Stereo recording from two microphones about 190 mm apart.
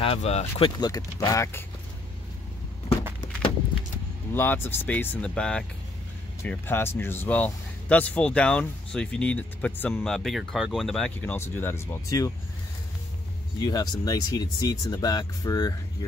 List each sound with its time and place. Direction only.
0.0 s speech: 30° left (ahead or behind); by 1.6 s 15° left (ahead or behind)
4.3 s speech: 10° left (ahead or behind)
13.6 s speech: 20° left (ahead or behind)